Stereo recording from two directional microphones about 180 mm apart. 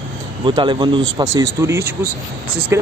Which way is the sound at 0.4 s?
25° right (ahead or behind).